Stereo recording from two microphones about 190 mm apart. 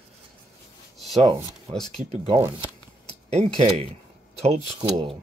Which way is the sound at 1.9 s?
30° right (ahead or behind).